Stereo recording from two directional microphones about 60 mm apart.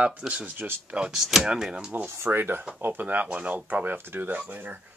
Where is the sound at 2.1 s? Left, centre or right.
Right.